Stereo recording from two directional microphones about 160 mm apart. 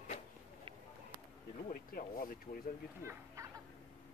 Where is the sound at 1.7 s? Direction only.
65° left (ahead or behind).